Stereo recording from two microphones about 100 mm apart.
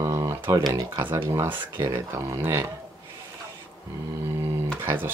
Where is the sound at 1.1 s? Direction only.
25° right (ahead or behind).